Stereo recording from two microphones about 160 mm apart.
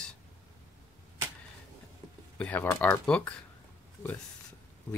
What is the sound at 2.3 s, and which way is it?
Speech, 10° left (ahead or behind).